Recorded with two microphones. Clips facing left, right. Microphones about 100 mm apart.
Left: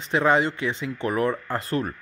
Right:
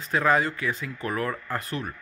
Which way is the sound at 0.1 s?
25° left (ahead or behind).